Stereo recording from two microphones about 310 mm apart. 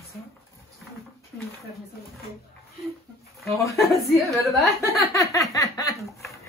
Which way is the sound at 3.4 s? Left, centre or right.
Centre.